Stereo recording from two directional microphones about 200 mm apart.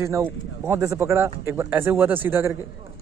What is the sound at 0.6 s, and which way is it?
A man's voice, 15° right (ahead or behind).